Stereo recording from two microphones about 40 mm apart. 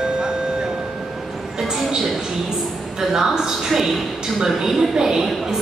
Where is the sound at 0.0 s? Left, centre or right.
Centre.